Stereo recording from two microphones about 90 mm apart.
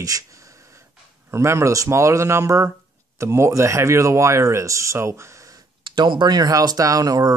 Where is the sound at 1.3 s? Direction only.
30° right (ahead or behind).